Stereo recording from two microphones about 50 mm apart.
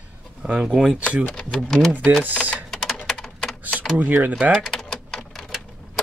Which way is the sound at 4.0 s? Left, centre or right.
Right.